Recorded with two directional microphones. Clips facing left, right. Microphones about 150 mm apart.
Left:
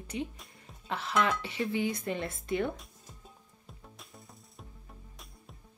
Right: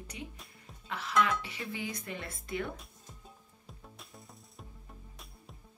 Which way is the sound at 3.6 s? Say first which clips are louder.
Even; centre (ahead or behind).